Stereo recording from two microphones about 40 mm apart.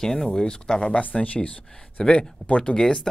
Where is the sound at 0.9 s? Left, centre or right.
Left.